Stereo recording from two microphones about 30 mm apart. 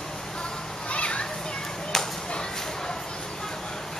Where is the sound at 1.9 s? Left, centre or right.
Centre.